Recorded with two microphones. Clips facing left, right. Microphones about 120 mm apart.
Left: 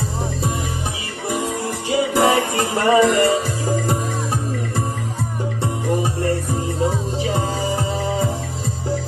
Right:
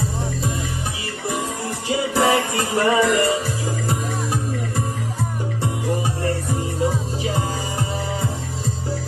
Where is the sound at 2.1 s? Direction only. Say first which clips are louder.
Left 1 dB; 20° left (ahead or behind).